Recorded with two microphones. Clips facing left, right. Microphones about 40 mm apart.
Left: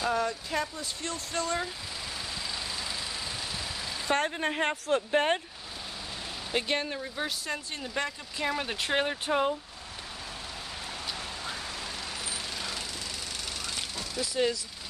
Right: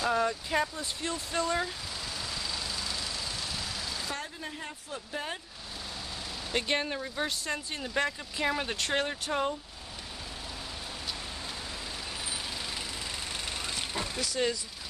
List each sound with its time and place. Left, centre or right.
0.1 s a sound: centre
1.0 s speech: centre
2.5 s vehicle: centre
4.1 s speech: left
6.5 s speech: centre
12.3 s vehicle: centre
13.5 s vehicle: right